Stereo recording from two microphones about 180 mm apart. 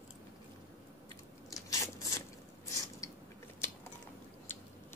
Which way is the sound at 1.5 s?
20° left (ahead or behind).